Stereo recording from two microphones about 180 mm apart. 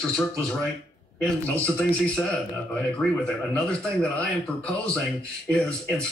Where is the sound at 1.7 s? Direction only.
5° left (ahead or behind).